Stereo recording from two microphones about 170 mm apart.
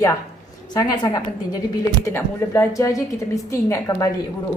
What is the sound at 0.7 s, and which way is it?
A woman's voice, 25° left (ahead or behind).